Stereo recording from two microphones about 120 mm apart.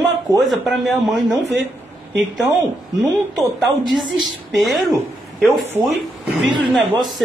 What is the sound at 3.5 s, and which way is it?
Speech, centre (ahead or behind).